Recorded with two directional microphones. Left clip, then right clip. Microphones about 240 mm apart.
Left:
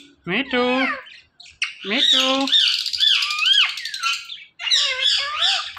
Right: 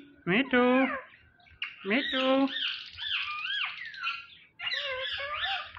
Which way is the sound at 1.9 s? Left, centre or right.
Centre.